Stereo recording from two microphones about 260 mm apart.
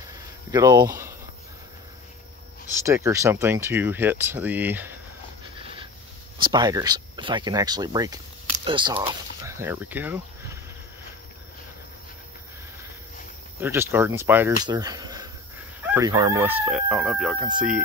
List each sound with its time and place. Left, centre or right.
0.0 s a sound: centre
2.8 s speech: centre
6.3 s speech: centre
13.6 s speech: centre